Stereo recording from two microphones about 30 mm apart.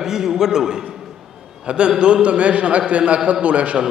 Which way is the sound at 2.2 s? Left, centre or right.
Right.